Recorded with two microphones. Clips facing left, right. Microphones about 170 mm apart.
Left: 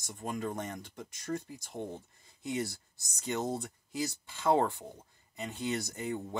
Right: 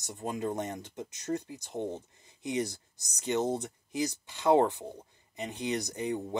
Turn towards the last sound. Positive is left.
turn(degrees=-20)  # may be behind; listen again after turning